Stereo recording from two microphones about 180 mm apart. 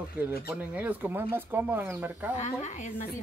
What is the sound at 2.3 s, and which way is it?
Speech, 40° left (ahead or behind).